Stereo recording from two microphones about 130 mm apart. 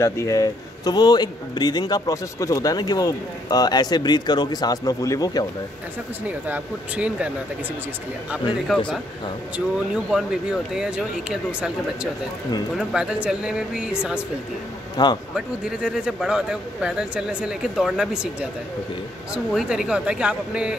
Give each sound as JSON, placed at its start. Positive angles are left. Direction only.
{"t": 0.0, "sound": "a man's voice", "side_deg": 25}
{"t": 6.2, "sound": "speech", "side_deg": -10}
{"t": 8.7, "sound": "speech", "side_deg": 0}
{"t": 10.1, "sound": "speech", "side_deg": -5}
{"t": 15.0, "sound": "a man's voice", "side_deg": 35}
{"t": 15.3, "sound": "speech", "side_deg": -5}